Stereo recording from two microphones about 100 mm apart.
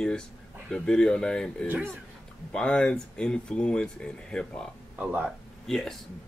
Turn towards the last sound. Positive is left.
turn(degrees=0)  # may be behind; listen again after turning